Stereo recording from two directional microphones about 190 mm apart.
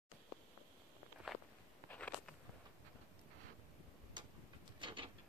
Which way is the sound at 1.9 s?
5° left (ahead or behind).